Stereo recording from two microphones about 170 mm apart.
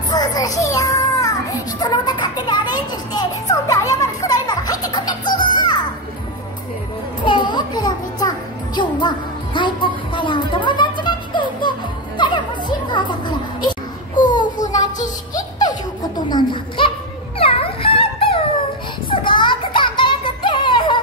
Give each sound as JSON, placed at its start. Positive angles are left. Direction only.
{"t": 0.1, "sound": "child singing", "side_deg": 20}
{"t": 7.2, "sound": "music", "side_deg": 25}
{"t": 12.2, "sound": "children playing", "side_deg": 25}
{"t": 14.2, "sound": "a sound", "side_deg": 50}
{"t": 14.7, "sound": "child singing", "side_deg": 45}
{"t": 16.3, "sound": "a child's voice", "side_deg": 30}
{"t": 17.4, "sound": "dog", "side_deg": 35}
{"t": 19.0, "sound": "music", "side_deg": 30}